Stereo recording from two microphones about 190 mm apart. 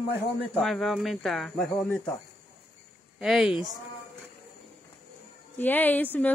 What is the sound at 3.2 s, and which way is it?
Speech, centre (ahead or behind).